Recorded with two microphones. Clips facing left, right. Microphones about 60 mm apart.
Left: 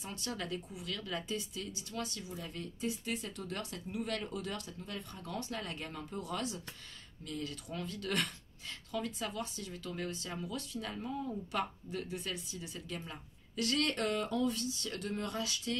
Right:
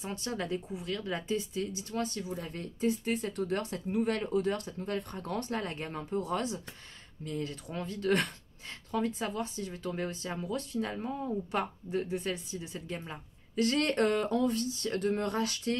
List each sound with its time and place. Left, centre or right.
0.0 s speech: right